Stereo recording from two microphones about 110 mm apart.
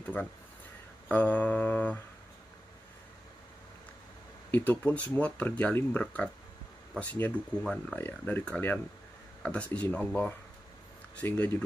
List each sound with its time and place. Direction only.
0.0 s speech: 15° left (ahead or behind)
4.6 s speech: 15° left (ahead or behind)